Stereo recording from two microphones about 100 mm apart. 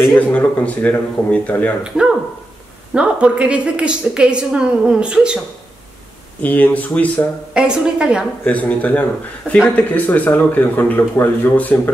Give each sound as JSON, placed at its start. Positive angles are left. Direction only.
{"t": 0.1, "sound": "speech", "side_deg": 15}
{"t": 1.8, "sound": "a woman's voice", "side_deg": -10}
{"t": 6.4, "sound": "speech", "side_deg": 15}
{"t": 7.5, "sound": "a woman's voice", "side_deg": -10}
{"t": 8.5, "sound": "speech", "side_deg": 15}